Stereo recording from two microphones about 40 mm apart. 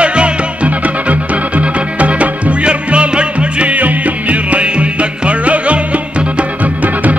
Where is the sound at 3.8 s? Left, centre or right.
Right.